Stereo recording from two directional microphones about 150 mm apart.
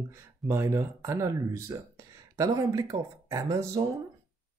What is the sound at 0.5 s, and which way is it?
Speech, 15° right (ahead or behind).